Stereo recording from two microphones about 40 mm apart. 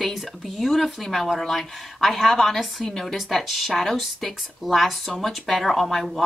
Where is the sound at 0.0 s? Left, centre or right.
Centre.